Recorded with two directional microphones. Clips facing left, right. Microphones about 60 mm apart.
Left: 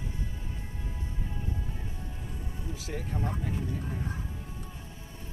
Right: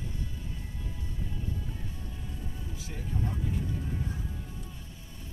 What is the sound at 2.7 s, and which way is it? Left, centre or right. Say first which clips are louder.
Music: left 5 dB; left.